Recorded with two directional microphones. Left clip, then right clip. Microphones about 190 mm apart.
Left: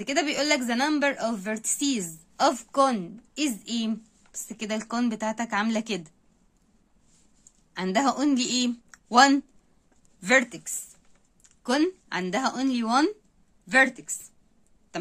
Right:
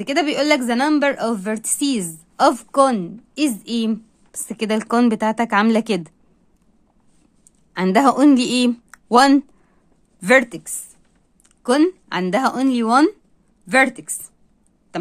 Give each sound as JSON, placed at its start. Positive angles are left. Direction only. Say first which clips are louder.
{"t": 0.0, "sound": "a woman's voice", "louder": "right 7 dB", "side_deg": -30}
{"t": 7.7, "sound": "a woman's voice", "louder": "right 9 dB", "side_deg": -35}